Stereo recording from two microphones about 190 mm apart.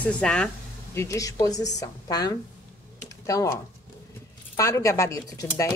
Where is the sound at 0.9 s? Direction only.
15° left (ahead or behind).